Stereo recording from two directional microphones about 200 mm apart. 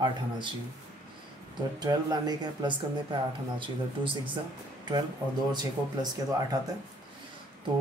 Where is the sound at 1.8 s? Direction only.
20° right (ahead or behind).